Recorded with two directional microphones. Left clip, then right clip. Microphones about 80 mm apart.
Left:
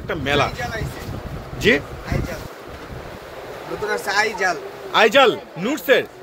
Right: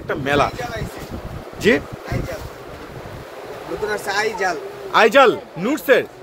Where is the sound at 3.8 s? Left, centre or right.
Centre.